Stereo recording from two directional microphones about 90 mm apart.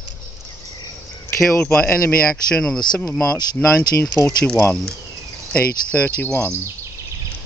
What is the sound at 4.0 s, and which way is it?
Speech, 25° left (ahead or behind).